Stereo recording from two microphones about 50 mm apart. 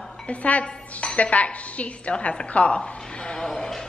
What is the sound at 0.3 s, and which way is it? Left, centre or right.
Speech, left.